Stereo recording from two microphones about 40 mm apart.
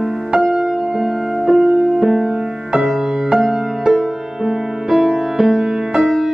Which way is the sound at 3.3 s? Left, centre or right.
Centre.